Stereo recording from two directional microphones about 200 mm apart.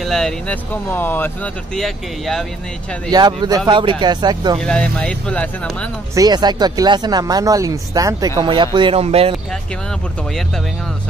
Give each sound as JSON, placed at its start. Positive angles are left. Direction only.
{"t": 0.0, "sound": "speech", "side_deg": 0}
{"t": 3.1, "sound": "speech", "side_deg": -20}
{"t": 4.6, "sound": "speech", "side_deg": 5}
{"t": 6.1, "sound": "speech", "side_deg": -20}